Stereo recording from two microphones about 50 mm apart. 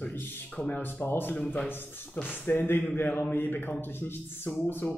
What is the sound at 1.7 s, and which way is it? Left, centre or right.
Speech, left.